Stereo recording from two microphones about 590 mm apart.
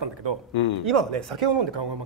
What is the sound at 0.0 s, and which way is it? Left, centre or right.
Speech, right.